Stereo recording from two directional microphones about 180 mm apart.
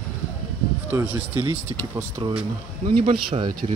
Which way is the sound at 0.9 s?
10° right (ahead or behind).